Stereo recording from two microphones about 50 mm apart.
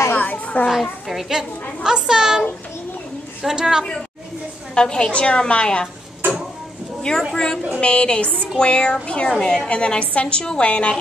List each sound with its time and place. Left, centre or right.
0.1 s children playing: left
1.0 s a woman's voice: centre
3.4 s a woman's voice: centre
4.7 s a woman's voice: centre
7.3 s a woman's voice: centre
9.7 s a woman's voice: left